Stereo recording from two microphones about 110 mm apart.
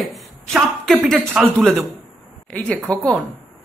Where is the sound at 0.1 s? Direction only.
Centre (ahead or behind).